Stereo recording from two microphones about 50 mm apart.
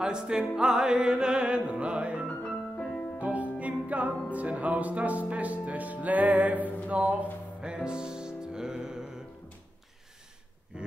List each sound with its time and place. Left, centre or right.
0.0 s music: centre
2.2 s music: left
3.2 s music: right
7.6 s music: centre
10.7 s a sound: centre